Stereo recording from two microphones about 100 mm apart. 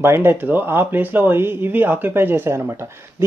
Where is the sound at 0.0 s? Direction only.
25° right (ahead or behind).